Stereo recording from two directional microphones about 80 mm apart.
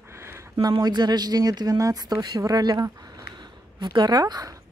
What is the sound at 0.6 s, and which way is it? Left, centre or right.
A woman's voice, right.